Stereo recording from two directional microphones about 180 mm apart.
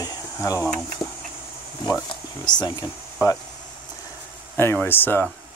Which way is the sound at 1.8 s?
20° left (ahead or behind).